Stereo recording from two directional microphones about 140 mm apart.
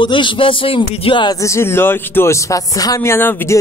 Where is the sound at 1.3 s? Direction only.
20° left (ahead or behind).